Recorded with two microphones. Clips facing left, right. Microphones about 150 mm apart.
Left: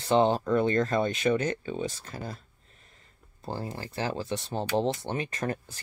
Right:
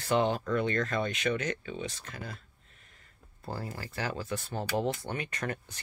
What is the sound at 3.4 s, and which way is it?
Speech, 25° left (ahead or behind).